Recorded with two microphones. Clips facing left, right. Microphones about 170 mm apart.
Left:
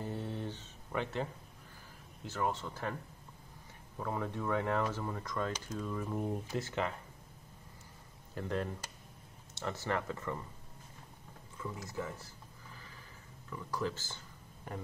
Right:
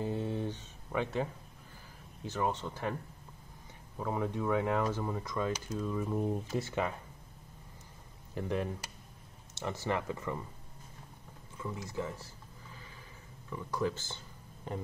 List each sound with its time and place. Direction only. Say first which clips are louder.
0.0 s a sound: right 5 dB; 15° right (ahead or behind)
2.2 s speech: right 2 dB; 15° right (ahead or behind)
4.0 s speech: right 3 dB; 15° right (ahead or behind)
6.5 s speech: right 2 dB; 15° right (ahead or behind)
8.4 s speech: right 2 dB; 15° right (ahead or behind)
9.7 s speech: right 2 dB; 15° right (ahead or behind)
11.7 s speech: right 3 dB; 20° right (ahead or behind)
13.5 s speech: right 3 dB; 15° right (ahead or behind)